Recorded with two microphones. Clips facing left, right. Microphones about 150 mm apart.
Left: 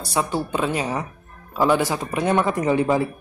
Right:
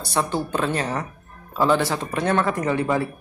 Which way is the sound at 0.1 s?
10° left (ahead or behind).